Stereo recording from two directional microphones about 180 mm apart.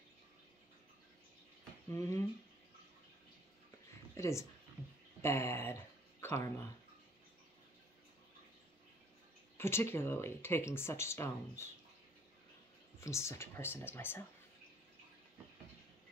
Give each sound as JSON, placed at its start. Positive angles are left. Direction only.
{"t": 1.9, "sound": "speech", "side_deg": 15}
{"t": 4.2, "sound": "speech", "side_deg": 15}
{"t": 9.6, "sound": "speech", "side_deg": 15}
{"t": 13.0, "sound": "speech", "side_deg": 15}